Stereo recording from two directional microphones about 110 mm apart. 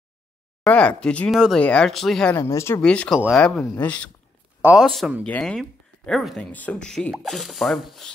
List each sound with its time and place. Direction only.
0.7 s speech: 10° left (ahead or behind)
1.3 s speech: 5° right (ahead or behind)
1.6 s speech: 10° left (ahead or behind)
2.3 s speech: 25° left (ahead or behind)
2.8 s speech: 10° left (ahead or behind)
4.7 s speech: centre (ahead or behind)
6.5 s speech: 15° left (ahead or behind)